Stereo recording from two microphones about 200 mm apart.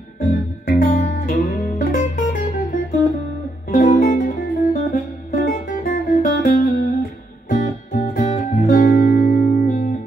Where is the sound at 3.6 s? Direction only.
40° left (ahead or behind).